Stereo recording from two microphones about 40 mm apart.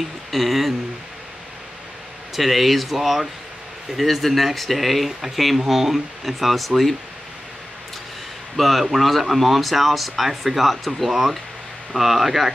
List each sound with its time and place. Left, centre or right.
0.3 s speech: centre
2.3 s speech: centre
8.5 s speech: centre